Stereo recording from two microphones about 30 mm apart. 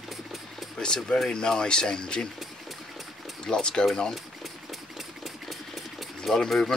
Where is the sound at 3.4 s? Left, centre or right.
Left.